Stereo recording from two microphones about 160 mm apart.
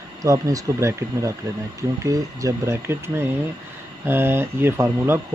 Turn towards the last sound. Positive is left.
turn(degrees=-15)  # may be behind; listen again after turning